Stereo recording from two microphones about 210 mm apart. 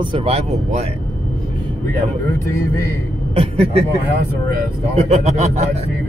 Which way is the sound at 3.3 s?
30° right (ahead or behind).